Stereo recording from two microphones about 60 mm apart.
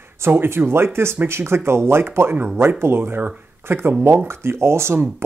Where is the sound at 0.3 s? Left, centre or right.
Right.